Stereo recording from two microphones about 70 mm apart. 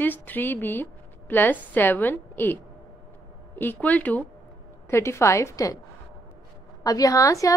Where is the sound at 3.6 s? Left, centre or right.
Left.